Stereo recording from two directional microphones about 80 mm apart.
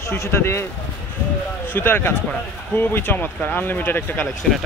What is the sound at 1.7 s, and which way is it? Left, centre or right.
Speech, left.